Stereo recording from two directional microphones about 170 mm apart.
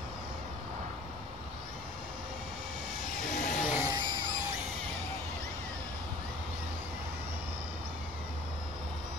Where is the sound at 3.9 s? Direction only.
30° right (ahead or behind).